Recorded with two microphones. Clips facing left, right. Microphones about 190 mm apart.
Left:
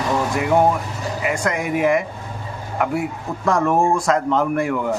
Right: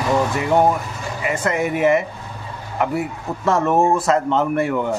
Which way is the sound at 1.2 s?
5° right (ahead or behind).